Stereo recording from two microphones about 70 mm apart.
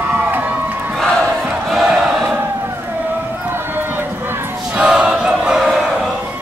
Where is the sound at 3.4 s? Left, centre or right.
Right.